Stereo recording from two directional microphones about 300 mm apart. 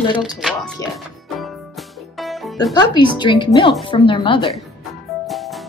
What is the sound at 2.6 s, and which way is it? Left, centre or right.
Speech, centre.